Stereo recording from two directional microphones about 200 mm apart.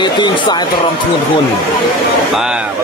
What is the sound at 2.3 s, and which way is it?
Speech, 5° right (ahead or behind).